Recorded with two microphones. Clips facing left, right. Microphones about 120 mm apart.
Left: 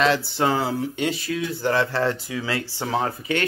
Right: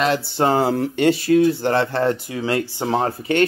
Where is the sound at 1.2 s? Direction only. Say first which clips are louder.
Right 9 dB; 45° right (ahead or behind).